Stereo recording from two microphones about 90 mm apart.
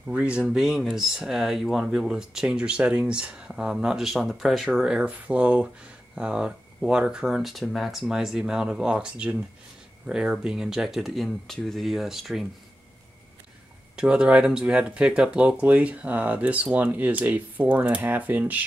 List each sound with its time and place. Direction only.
0.1 s speech: 15° right (ahead or behind)
13.9 s speech: 10° right (ahead or behind)